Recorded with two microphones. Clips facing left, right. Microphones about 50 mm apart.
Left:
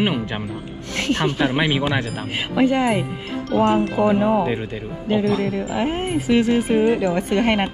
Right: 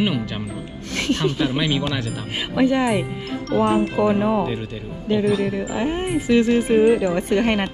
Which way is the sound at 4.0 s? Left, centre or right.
Left.